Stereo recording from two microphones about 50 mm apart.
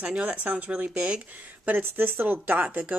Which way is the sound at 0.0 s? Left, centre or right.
Right.